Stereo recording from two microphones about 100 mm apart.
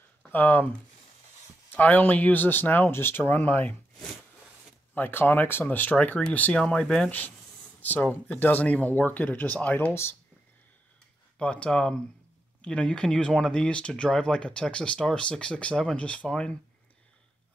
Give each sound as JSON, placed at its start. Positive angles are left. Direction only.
{"t": 0.3, "sound": "speech", "side_deg": 20}
{"t": 1.7, "sound": "speech", "side_deg": 15}
{"t": 4.9, "sound": "speech", "side_deg": 20}
{"t": 11.3, "sound": "speech", "side_deg": 10}